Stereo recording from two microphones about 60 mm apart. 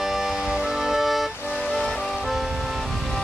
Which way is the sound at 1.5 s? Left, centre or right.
Centre.